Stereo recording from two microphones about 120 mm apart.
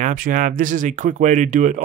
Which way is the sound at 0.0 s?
90° right.